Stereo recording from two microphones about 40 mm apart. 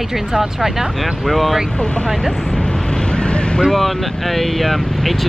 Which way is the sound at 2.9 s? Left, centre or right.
Left.